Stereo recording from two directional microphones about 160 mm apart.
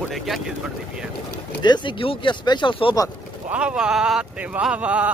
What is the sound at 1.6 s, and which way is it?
Speech, 30° left (ahead or behind).